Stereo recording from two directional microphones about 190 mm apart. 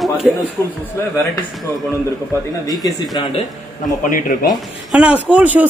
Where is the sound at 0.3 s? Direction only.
5° right (ahead or behind).